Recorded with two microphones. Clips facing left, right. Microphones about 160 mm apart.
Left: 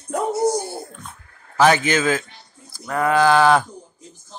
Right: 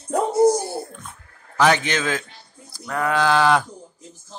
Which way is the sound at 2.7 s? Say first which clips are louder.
Left 3 dB; 5° left (ahead or behind).